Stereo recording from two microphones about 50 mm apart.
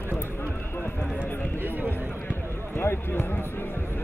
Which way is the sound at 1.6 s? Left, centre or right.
Right.